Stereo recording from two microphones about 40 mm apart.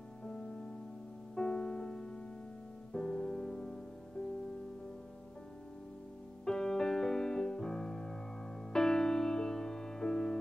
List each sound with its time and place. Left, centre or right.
1.3 s music: centre
6.4 s music: centre